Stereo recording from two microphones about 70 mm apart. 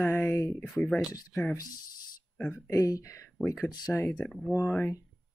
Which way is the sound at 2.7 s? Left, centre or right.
Left.